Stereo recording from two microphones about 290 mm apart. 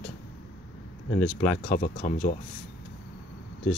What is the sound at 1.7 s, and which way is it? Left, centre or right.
Speech, left.